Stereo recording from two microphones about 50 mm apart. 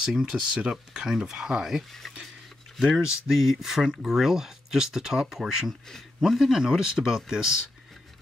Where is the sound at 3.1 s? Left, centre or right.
Centre.